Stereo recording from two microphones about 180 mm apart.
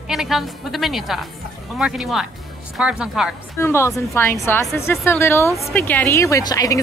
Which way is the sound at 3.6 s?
15° left (ahead or behind).